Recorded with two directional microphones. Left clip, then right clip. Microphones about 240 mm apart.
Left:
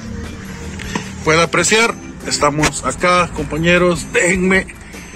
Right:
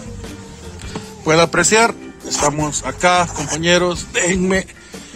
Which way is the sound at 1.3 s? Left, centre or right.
Right.